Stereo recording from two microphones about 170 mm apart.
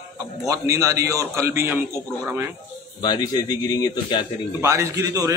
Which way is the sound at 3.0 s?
25° left (ahead or behind).